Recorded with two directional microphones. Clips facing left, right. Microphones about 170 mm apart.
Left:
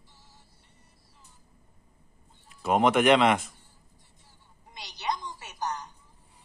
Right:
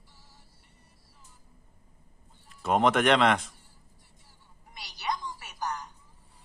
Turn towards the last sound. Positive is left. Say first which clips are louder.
# left 1 dB
turn(degrees=20)  # may be behind; listen again after turning